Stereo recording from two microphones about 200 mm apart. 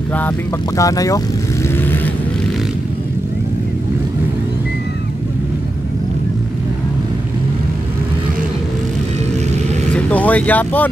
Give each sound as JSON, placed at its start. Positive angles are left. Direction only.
{"t": 0.7, "sound": "speech", "side_deg": 15}
{"t": 9.9, "sound": "vehicle", "side_deg": 5}